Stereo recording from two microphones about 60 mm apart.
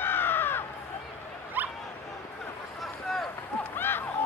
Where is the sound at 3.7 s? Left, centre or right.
Left.